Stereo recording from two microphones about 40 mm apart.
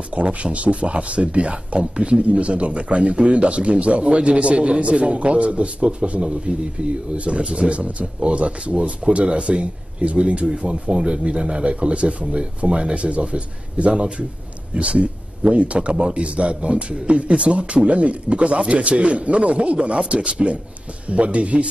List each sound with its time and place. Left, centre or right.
0.1 s a man's voice: right